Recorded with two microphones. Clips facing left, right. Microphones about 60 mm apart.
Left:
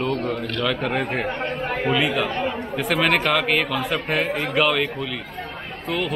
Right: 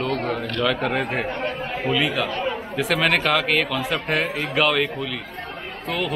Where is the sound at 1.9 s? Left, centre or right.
Centre.